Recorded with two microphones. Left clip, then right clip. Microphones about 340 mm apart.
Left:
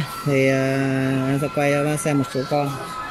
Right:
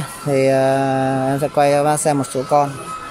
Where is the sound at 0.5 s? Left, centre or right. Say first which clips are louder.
Right 6 dB; right.